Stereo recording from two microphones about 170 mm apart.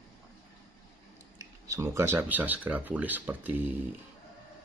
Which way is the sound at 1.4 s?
20° right (ahead or behind).